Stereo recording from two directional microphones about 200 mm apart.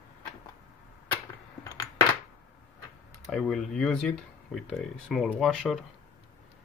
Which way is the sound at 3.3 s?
5° left (ahead or behind).